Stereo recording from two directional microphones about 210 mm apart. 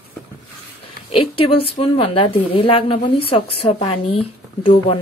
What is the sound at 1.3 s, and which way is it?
A woman's voice, 25° left (ahead or behind).